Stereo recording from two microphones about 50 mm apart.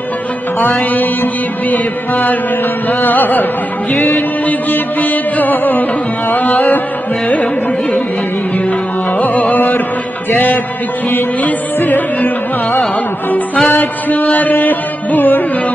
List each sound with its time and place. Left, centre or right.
0.6 s music: left
9.2 s music: left
13.7 s music: left